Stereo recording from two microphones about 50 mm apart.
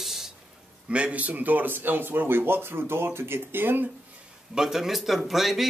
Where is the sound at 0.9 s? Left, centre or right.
Right.